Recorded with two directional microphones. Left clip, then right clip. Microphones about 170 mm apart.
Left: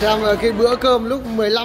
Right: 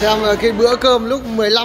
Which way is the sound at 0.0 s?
5° right (ahead or behind).